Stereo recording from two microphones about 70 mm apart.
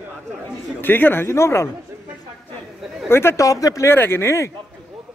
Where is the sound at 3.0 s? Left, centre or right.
Left.